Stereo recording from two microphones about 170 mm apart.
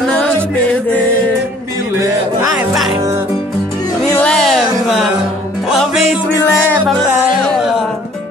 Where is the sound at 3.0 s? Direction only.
15° right (ahead or behind).